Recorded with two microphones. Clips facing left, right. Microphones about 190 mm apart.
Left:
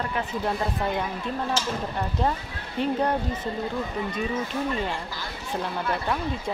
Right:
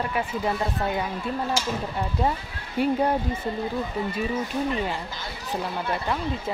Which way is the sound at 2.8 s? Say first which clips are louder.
Right 2 dB; 10° right (ahead or behind).